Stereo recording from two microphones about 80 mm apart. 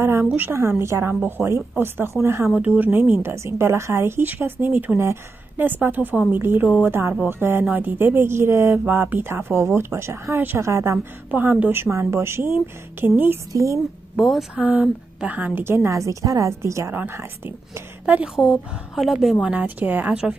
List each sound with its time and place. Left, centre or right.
0.0 s a woman's voice: right
2.5 s a woman's voice: centre; by 11.0 s right
11.2 s a woman's voice: right
11.7 s a woman's voice: right
13.5 s speech: right
14.1 s a woman's voice: centre
14.5 s speech: centre; by 17.8 s right
18.0 s speech: centre
18.9 s a woman's voice: centre
19.4 s a woman's voice: centre